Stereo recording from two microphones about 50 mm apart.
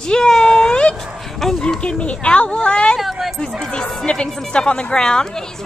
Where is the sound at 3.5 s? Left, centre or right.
Centre.